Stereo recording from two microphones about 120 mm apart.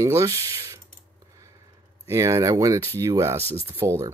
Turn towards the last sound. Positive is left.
turn(degrees=-25)  # may be behind; listen again after turning